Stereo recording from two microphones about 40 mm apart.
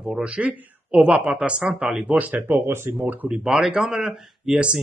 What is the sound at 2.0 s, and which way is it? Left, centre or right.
Speech, right.